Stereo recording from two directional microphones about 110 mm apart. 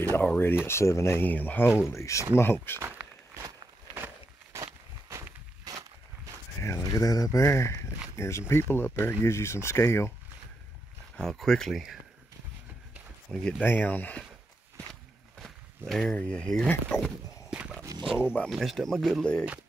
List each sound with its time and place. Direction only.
0.1 s speech: 15° left (ahead or behind)
2.8 s walk: 25° right (ahead or behind)
3.4 s a sound: 40° right (ahead or behind)
3.9 s a sound: 20° right (ahead or behind)
5.7 s walk: 35° right (ahead or behind)
6.6 s speech: 30° left (ahead or behind)
11.1 s speech: 5° left (ahead or behind)
13.3 s speech: 10° left (ahead or behind)
15.9 s speech: 10° left (ahead or behind)
17.9 s a sound: 35° right (ahead or behind)
18.5 s speech: centre (ahead or behind)